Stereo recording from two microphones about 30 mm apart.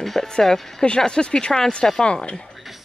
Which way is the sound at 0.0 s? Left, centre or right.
Centre.